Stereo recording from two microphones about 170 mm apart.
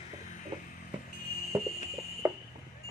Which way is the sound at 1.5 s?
15° right (ahead or behind).